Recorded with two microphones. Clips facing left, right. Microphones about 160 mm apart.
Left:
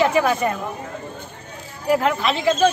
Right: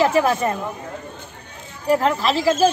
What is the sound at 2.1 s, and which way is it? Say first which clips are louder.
Speech: right 1 dB; centre (ahead or behind).